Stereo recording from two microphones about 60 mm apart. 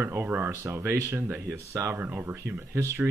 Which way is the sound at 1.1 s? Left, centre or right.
Right.